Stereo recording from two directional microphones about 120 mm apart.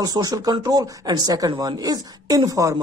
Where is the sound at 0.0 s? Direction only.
30° right (ahead or behind).